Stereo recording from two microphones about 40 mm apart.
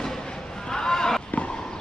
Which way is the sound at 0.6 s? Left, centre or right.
Centre.